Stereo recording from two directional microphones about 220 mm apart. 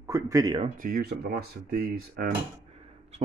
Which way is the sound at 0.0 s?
15° right (ahead or behind).